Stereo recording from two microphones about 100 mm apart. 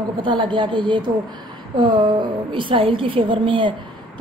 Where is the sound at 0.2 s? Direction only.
55° right (ahead or behind).